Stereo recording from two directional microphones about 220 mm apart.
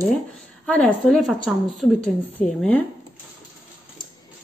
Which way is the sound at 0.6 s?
5° left (ahead or behind).